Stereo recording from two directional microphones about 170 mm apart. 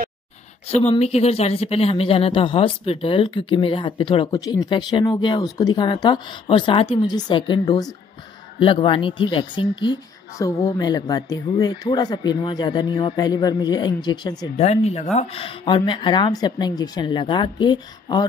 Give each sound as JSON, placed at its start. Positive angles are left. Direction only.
{"t": 0.7, "sound": "speech", "side_deg": 40}
{"t": 14.6, "sound": "speech", "side_deg": 40}